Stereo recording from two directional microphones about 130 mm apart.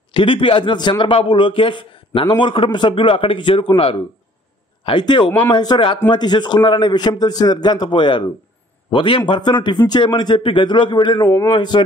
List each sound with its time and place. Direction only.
0.1 s a man's voice: 40° left (ahead or behind)